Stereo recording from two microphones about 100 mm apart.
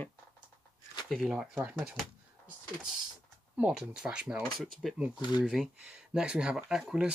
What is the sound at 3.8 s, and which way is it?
Speech, 5° right (ahead or behind).